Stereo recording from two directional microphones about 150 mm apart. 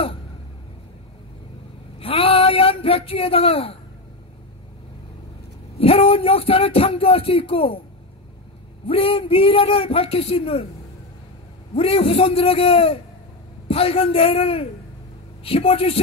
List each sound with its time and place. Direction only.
2.0 s a sound: 40° left (ahead or behind)
5.8 s speech: 40° left (ahead or behind)
8.8 s speech: 40° left (ahead or behind)
11.7 s speech: 40° left (ahead or behind)